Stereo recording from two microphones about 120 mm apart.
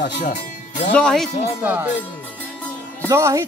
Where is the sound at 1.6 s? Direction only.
15° right (ahead or behind).